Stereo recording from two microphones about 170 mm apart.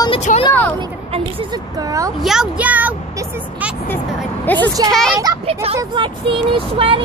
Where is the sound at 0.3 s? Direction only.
50° left (ahead or behind).